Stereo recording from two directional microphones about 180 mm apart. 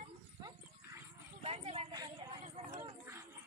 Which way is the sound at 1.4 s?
35° right (ahead or behind).